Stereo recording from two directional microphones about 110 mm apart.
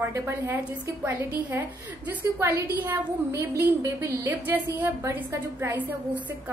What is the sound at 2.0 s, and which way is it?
A woman's voice, 20° right (ahead or behind).